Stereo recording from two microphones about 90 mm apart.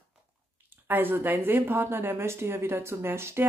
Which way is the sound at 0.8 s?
25° right (ahead or behind).